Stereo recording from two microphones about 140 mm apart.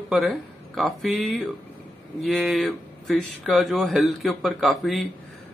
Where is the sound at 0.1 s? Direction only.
Centre (ahead or behind).